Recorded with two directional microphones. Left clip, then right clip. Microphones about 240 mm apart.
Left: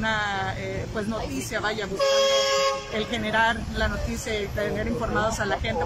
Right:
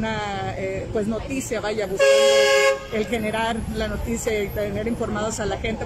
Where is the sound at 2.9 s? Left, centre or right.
Centre.